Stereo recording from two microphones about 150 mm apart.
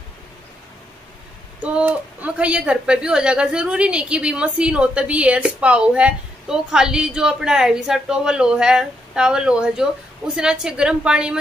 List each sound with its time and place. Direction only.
1.6 s a woman's voice: 10° right (ahead or behind)